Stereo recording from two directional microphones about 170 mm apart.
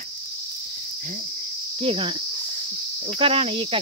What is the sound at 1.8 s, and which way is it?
Speech, 35° right (ahead or behind).